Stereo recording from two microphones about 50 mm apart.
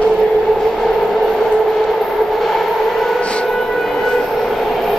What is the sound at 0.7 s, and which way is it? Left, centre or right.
Train, centre.